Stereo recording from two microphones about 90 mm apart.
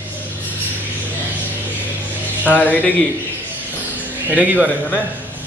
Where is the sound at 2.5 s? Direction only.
20° left (ahead or behind).